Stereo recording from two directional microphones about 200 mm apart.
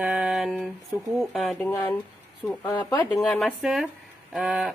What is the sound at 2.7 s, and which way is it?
Speech, 20° left (ahead or behind).